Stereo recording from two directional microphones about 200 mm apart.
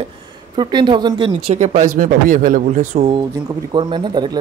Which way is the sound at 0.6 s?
25° right (ahead or behind).